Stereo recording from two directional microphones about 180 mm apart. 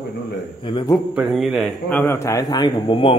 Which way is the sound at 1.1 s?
Centre (ahead or behind).